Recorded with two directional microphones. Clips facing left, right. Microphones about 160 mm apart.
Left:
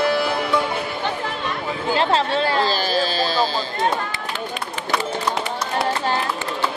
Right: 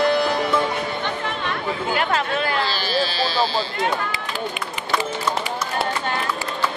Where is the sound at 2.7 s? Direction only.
45° left (ahead or behind).